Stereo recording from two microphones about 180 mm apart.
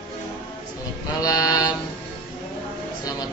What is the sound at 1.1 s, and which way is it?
Mantra, 20° left (ahead or behind).